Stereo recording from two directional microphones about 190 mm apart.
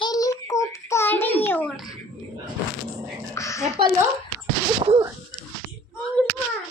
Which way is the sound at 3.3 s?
15° left (ahead or behind).